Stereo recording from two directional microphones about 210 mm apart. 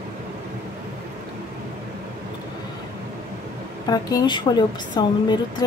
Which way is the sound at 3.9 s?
20° left (ahead or behind).